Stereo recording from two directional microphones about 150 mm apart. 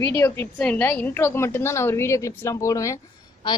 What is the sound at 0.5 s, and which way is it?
A woman's voice, 10° left (ahead or behind).